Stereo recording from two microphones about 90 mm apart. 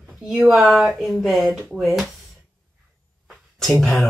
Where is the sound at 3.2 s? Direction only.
5° left (ahead or behind).